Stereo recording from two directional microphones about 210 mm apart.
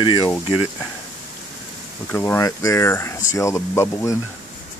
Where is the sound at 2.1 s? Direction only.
10° left (ahead or behind).